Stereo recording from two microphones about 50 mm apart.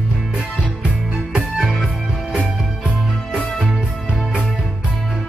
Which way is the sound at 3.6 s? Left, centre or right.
Centre.